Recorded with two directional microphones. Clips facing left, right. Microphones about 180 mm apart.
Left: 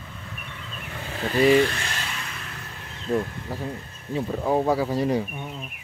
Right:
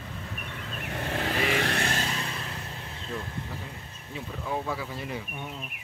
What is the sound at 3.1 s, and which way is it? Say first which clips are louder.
Speech: left 11 dB; 35° left (ahead or behind).